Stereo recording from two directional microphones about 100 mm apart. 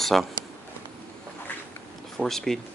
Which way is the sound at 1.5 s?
20° left (ahead or behind).